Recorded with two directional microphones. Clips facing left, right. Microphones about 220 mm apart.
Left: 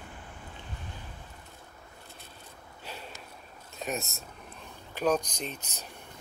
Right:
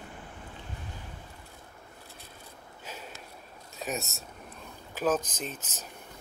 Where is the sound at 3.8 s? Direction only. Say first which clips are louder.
Even; centre (ahead or behind).